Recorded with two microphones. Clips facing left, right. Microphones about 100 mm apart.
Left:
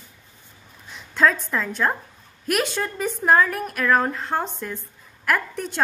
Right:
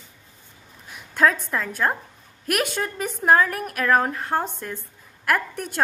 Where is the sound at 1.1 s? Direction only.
50° right (ahead or behind).